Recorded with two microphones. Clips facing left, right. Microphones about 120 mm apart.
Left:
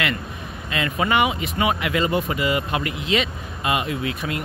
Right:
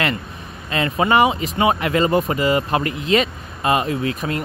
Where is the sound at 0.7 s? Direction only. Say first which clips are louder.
Right 4 dB; 35° right (ahead or behind).